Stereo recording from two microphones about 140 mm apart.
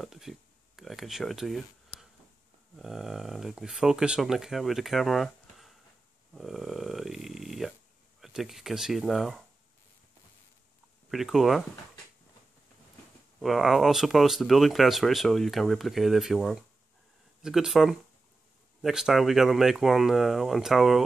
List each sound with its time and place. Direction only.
0.0 s a sound: centre (ahead or behind)
2.7 s speech: centre (ahead or behind)
6.3 s a sound: centre (ahead or behind)
8.2 s speech: centre (ahead or behind)
11.1 s speech: centre (ahead or behind)
13.4 s speech: centre (ahead or behind)